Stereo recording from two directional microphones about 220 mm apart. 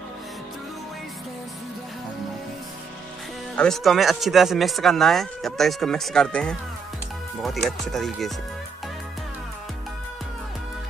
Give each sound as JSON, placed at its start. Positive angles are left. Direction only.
{"t": 3.5, "sound": "speech", "side_deg": 0}